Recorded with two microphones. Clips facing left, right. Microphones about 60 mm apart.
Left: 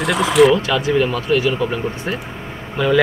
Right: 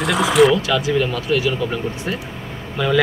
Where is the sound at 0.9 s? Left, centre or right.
Centre.